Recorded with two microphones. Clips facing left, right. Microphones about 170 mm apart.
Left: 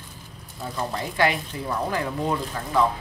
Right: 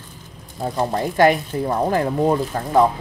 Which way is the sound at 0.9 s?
45° right (ahead or behind).